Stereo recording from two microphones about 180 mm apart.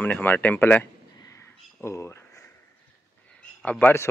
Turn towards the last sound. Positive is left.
turn(degrees=10)  # may be behind; listen again after turning